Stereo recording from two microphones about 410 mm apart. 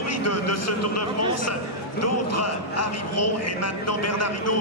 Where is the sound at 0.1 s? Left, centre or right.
Left.